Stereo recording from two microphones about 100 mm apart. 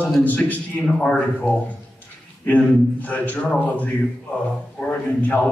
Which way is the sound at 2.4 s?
15° left (ahead or behind).